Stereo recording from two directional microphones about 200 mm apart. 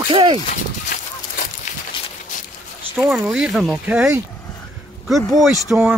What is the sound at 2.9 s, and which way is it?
Speech, 5° right (ahead or behind).